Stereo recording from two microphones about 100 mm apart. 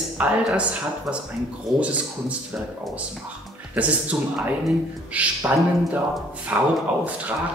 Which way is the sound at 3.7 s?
15° right (ahead or behind).